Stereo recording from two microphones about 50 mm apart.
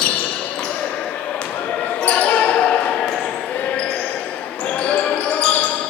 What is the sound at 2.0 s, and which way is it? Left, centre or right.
Basketball bounce, left.